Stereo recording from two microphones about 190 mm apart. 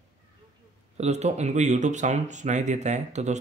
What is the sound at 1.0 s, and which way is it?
Speech, 35° right (ahead or behind).